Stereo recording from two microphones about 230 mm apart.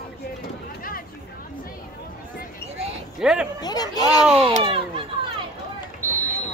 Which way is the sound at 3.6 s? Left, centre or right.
Centre.